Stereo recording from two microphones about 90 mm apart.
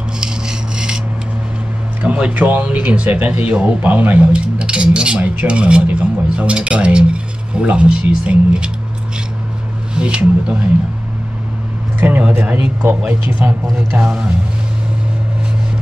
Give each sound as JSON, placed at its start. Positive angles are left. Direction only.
{"t": 0.2, "sound": "a sound", "side_deg": -10}
{"t": 2.0, "sound": "speech", "side_deg": -15}
{"t": 9.9, "sound": "speech", "side_deg": -10}
{"t": 12.0, "sound": "speech", "side_deg": -20}